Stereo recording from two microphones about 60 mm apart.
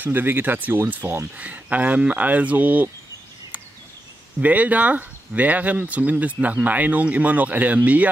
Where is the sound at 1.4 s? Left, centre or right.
Right.